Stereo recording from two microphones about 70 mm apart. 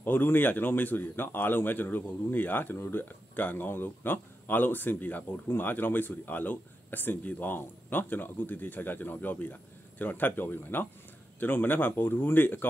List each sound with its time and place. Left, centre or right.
0.0 s speech: left